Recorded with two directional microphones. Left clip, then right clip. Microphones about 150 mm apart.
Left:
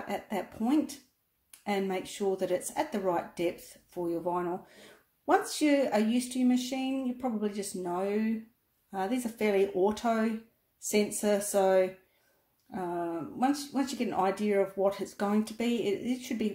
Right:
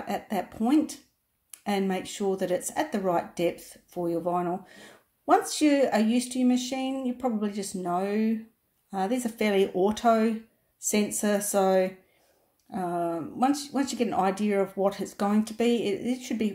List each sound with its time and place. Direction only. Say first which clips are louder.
0.0 s speech: right 4 dB; 25° right (ahead or behind)